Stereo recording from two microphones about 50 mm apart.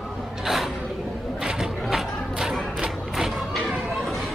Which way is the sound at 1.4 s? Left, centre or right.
Centre.